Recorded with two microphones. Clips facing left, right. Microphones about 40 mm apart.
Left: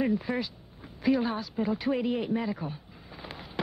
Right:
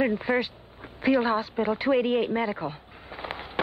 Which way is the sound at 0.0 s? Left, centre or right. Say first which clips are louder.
Right 4 dB; right.